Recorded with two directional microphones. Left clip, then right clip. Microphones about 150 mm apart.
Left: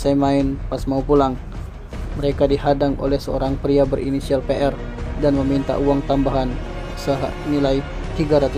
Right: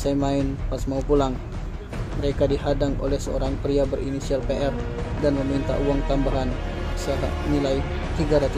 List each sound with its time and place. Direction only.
0.0 s speech: 20° left (ahead or behind)
7.6 s speech: 25° left (ahead or behind)